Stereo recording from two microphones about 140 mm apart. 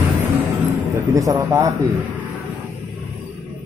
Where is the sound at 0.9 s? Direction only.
25° right (ahead or behind).